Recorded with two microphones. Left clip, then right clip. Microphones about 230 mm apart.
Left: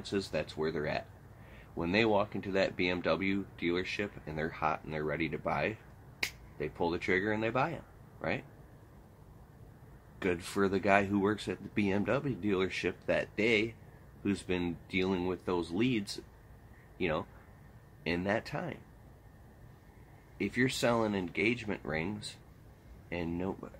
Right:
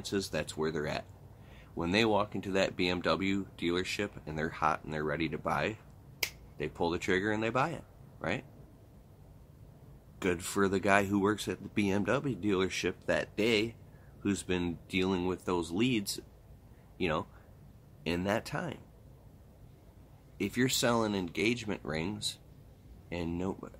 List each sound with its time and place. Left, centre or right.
0.0 s speech: centre
10.1 s speech: centre
20.3 s speech: centre